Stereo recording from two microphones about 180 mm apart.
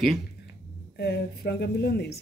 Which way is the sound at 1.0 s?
65° left (ahead or behind).